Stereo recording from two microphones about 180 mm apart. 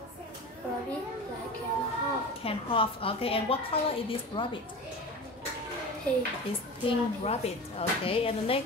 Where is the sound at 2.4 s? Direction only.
30° left (ahead or behind).